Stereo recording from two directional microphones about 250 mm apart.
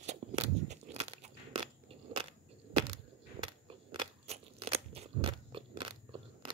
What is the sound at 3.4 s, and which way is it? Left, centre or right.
Crunch, right.